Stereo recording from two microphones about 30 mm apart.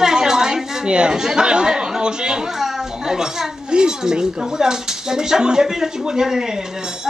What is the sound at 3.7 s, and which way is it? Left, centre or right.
A child's voice, right.